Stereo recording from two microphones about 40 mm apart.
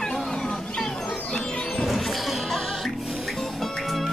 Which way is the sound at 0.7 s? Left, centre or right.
Centre.